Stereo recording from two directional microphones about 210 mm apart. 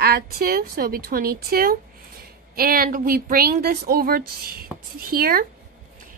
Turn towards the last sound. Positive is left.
turn(degrees=-45)  # may be behind; listen again after turning